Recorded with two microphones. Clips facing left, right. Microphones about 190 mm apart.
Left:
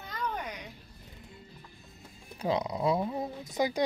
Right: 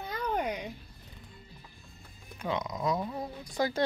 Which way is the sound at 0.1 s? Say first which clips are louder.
Right 4 dB; 55° right (ahead or behind).